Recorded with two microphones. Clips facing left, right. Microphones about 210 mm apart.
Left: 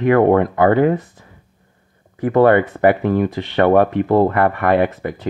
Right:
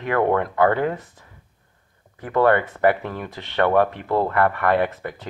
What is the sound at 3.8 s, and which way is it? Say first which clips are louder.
Speech: left 7 dB; 40° left (ahead or behind).